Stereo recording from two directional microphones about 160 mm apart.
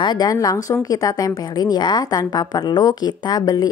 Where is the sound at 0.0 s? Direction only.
25° left (ahead or behind).